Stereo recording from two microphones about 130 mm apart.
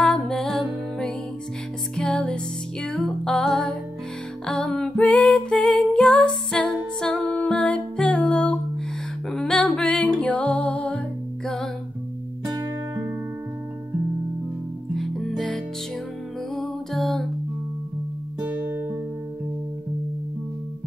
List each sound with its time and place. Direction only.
0.0 s music: 5° left (ahead or behind)
12.4 s music: 25° right (ahead or behind)
15.0 s music: centre (ahead or behind)
18.4 s music: 15° right (ahead or behind)